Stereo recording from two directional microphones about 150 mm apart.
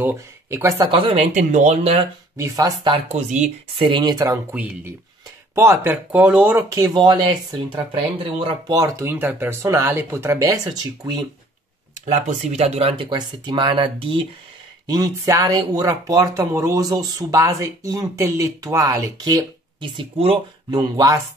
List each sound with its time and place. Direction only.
0.0 s speech: 20° right (ahead or behind)
0.9 s speech: 40° right (ahead or behind)
1.3 s speech: 50° right (ahead or behind)
2.3 s speech: 20° right (ahead or behind)
3.1 s speech: 50° right (ahead or behind)
3.7 s speech: 35° right (ahead or behind)
4.6 s speech: 10° right (ahead or behind); by 7.8 s 25° right (ahead or behind)
8.2 s speech: 40° right (ahead or behind)
8.7 s speech: 20° right (ahead or behind)
12.1 s speech: 50° right (ahead or behind)
14.9 s speech: 25° right (ahead or behind)
20.7 s speech: 25° right (ahead or behind)